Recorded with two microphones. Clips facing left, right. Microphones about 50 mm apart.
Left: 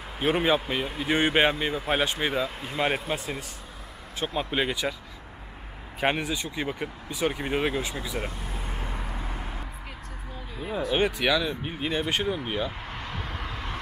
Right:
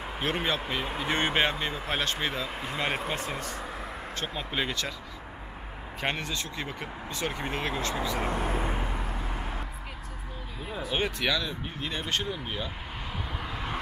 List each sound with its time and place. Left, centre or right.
0.2 s speech: centre
5.9 s speech: centre
8.3 s speech: right
8.7 s vehicle: centre
10.6 s speech: centre
11.6 s speech: centre
13.3 s vehicle: centre